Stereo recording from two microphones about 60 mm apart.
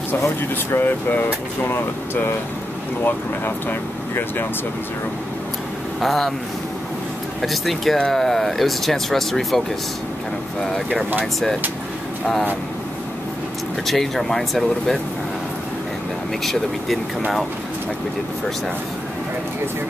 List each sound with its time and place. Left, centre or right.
0.4 s speech: left
5.9 s speech: centre
7.4 s speech: centre
13.8 s speech: centre